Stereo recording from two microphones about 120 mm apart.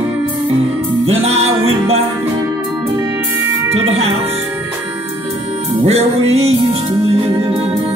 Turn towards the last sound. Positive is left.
turn(degrees=-55)  # may be behind; listen again after turning